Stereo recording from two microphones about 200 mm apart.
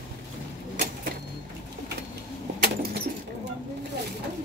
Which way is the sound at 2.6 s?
50° right (ahead or behind).